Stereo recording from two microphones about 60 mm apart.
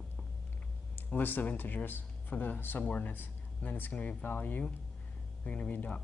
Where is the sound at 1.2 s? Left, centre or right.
Left.